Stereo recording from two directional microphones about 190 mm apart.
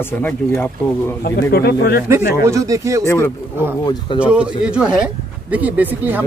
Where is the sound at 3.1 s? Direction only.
15° left (ahead or behind).